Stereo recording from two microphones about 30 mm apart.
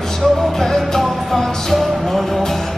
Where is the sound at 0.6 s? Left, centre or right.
Centre.